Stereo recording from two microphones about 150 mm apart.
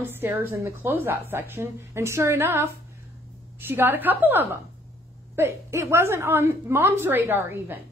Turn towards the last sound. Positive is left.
turn(degrees=-15)  # may be behind; listen again after turning